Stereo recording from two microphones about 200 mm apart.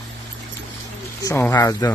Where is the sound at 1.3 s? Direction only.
15° left (ahead or behind).